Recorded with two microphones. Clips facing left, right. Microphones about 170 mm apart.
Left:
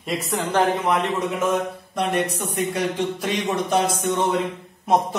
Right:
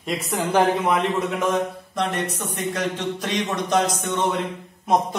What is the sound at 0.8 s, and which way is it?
Speech, centre (ahead or behind).